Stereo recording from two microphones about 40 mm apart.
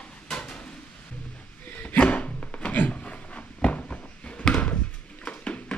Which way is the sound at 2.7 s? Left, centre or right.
Left.